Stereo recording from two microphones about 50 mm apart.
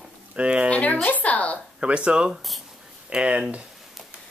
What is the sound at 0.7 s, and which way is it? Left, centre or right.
Speech, left.